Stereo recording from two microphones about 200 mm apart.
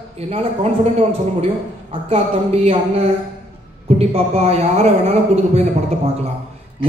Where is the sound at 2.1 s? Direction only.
30° right (ahead or behind).